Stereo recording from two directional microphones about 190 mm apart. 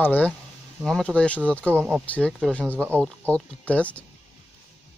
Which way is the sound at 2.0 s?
5° left (ahead or behind).